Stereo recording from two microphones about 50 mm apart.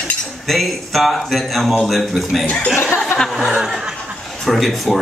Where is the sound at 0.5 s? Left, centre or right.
Centre.